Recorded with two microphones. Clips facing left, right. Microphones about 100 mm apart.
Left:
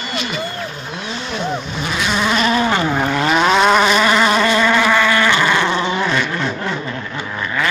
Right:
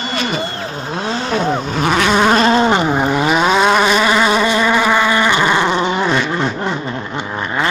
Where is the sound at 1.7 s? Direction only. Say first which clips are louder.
Right 7 dB; 60° right (ahead or behind).